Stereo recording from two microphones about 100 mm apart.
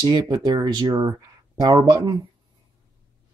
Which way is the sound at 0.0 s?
40° right (ahead or behind).